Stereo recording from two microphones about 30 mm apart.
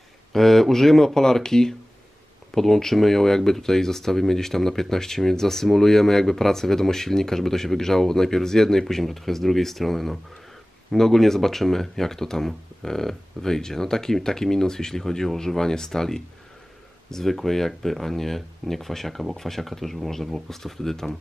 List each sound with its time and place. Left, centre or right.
0.3 s speech: centre